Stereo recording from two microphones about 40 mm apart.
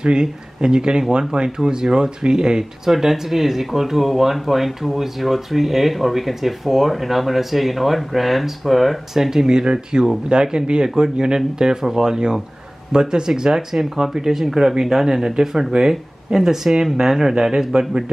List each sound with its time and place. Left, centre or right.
0.0 s speech: right